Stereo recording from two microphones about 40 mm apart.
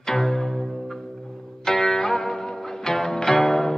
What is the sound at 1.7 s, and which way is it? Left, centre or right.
Music, left.